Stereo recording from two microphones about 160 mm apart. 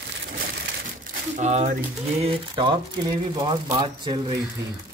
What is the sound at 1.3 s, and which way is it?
Speech, 45° right (ahead or behind).